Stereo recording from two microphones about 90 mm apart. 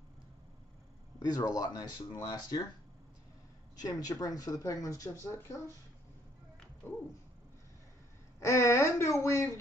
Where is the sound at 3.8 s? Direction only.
45° left (ahead or behind).